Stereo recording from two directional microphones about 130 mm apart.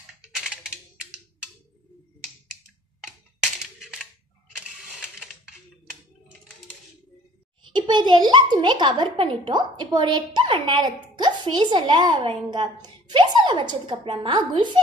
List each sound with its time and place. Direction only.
3.8 s cap gun: 5° right (ahead or behind)
7.7 s a woman's voice: 35° right (ahead or behind)